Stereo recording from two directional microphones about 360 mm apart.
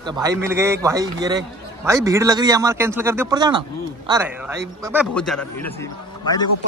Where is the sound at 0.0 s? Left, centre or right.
Centre.